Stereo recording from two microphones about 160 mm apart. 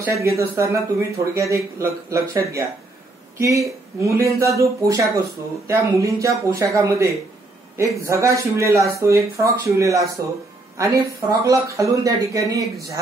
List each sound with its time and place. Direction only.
0.0 s speech: 20° right (ahead or behind)